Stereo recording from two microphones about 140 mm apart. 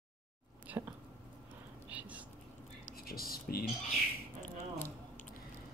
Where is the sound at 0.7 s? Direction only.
10° right (ahead or behind).